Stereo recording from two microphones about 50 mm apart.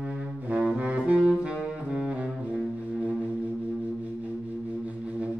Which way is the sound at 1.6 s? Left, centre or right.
Right.